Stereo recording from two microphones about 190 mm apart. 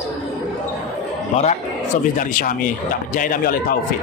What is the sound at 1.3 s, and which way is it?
Speech, 35° left (ahead or behind).